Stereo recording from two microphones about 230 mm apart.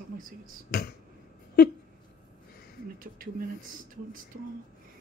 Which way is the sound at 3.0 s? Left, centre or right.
Right.